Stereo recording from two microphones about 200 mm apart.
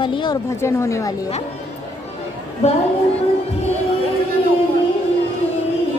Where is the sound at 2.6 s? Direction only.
30° left (ahead or behind).